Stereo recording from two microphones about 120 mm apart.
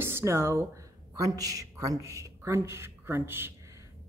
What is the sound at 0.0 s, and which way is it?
A woman's voice, 20° right (ahead or behind).